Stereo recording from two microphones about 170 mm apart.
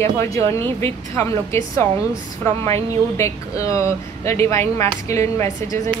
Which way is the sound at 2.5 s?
35° right (ahead or behind).